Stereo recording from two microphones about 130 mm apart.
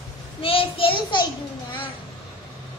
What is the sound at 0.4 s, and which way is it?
Child singing, 45° left (ahead or behind).